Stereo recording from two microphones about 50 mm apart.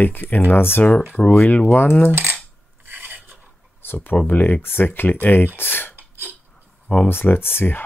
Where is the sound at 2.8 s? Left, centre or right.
Right.